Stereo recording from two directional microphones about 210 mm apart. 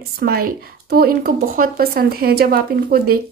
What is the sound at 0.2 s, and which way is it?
Speech, 45° right (ahead or behind).